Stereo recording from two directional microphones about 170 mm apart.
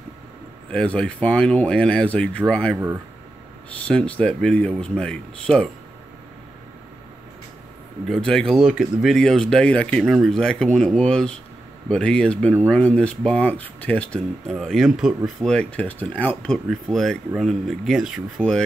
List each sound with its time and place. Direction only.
0.7 s speech: 5° left (ahead or behind)
3.8 s speech: 5° left (ahead or behind)
8.3 s speech: centre (ahead or behind)